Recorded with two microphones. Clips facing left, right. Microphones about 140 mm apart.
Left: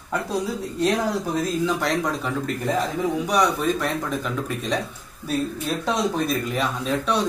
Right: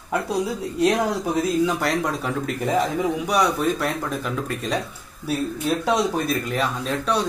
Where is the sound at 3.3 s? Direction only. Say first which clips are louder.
Even; 5° right (ahead or behind).